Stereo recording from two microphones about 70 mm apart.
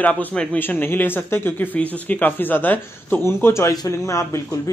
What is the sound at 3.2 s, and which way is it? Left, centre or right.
Speech, left.